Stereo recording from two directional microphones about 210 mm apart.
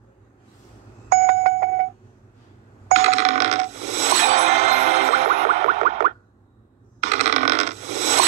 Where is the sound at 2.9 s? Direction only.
35° right (ahead or behind).